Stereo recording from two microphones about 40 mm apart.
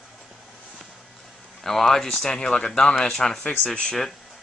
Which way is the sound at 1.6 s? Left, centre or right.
Centre.